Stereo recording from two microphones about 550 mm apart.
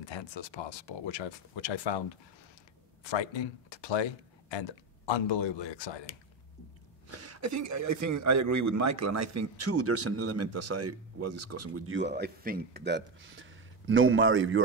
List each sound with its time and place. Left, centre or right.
0.0 s speech: left
7.1 s a man's voice: right